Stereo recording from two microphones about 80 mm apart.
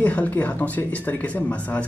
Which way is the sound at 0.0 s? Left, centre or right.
Centre.